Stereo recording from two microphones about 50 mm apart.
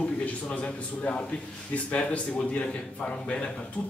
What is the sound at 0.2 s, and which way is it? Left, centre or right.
A man's voice, left.